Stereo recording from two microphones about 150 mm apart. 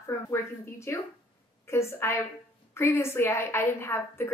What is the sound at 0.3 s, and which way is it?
A woman's voice, 20° left (ahead or behind).